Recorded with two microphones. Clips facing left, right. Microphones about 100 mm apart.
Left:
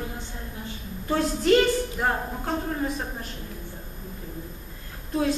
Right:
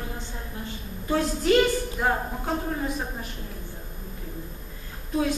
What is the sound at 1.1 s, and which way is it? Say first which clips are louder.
A man's voice: left 1 dB; centre (ahead or behind).